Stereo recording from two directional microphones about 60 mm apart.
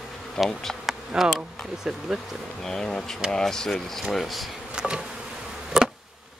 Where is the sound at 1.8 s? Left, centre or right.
Centre.